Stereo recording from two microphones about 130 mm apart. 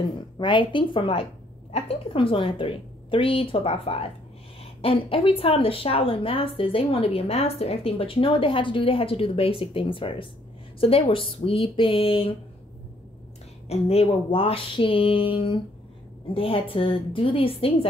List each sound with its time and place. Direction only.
0.0 s a woman's voice: 40° left (ahead or behind)
13.7 s a woman's voice: 50° left (ahead or behind)